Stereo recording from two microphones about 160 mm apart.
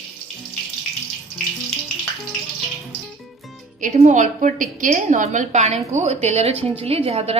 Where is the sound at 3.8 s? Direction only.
50° right (ahead or behind).